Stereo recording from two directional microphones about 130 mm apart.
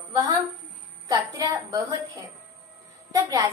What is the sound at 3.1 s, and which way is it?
Speech, 25° right (ahead or behind).